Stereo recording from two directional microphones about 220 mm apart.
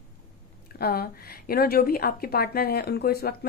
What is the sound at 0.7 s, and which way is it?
Speech, 45° left (ahead or behind).